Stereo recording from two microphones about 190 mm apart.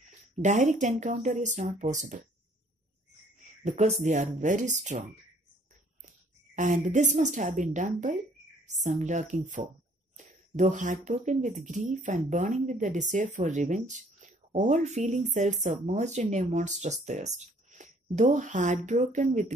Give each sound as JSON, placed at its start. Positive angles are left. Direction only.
{"t": 0.4, "sound": "speech", "side_deg": -40}
{"t": 3.6, "sound": "speech", "side_deg": -40}
{"t": 6.0, "sound": "a woman's voice", "side_deg": -40}